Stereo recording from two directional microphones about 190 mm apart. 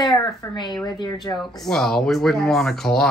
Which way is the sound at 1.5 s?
Centre (ahead or behind).